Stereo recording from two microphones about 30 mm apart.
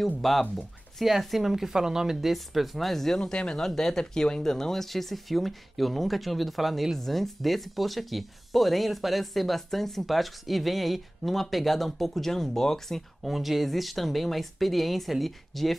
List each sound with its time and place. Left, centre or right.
0.2 s speech: centre
1.0 s speech: centre
2.3 s speech: centre
3.3 s speech: left
3.6 s speech: centre
4.9 s speech: centre
13.3 s speech: centre